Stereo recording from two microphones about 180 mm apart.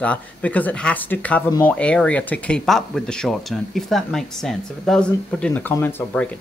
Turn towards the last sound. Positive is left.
turn(degrees=10)  # may be behind; listen again after turning